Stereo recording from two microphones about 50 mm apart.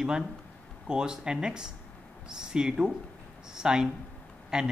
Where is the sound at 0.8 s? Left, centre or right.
Centre.